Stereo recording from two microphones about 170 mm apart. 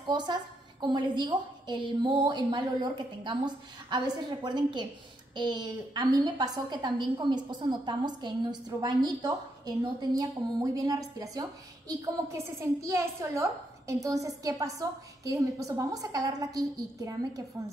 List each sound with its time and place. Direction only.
0.0 s a woman's voice: 25° right (ahead or behind)